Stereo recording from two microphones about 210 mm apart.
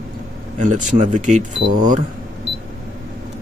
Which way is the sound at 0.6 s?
35° right (ahead or behind).